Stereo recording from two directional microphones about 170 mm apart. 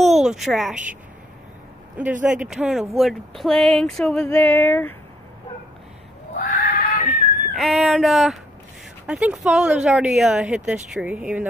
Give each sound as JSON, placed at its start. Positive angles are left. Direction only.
{"t": 0.0, "sound": "a woman's voice", "side_deg": 0}
{"t": 2.2, "sound": "speech", "side_deg": -5}
{"t": 4.3, "sound": "a sound", "side_deg": 10}
{"t": 6.3, "sound": "a sound", "side_deg": 50}
{"t": 7.1, "sound": "dog", "side_deg": 0}
{"t": 9.0, "sound": "speech", "side_deg": -5}